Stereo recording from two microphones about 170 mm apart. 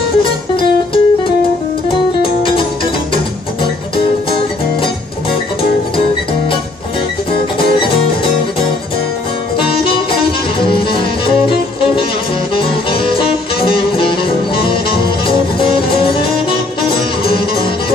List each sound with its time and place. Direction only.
0.6 s music: 30° left (ahead or behind)
2.4 s music: 30° left (ahead or behind)
10.6 s music: 30° left (ahead or behind)